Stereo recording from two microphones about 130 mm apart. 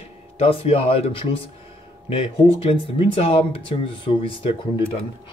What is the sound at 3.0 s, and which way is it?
Speech, 45° left (ahead or behind).